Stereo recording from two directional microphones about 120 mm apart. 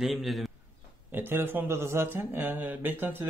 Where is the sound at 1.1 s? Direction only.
20° right (ahead or behind).